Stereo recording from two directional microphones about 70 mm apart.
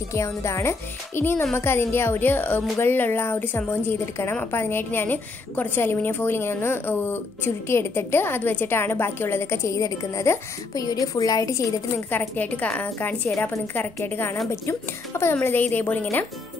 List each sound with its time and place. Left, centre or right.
0.1 s a woman's voice: left
9.8 s a woman's voice: left
10.7 s a woman's voice: left
12.1 s a woman's voice: left